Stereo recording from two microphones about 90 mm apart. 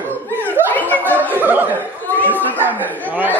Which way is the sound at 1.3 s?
20° right (ahead or behind).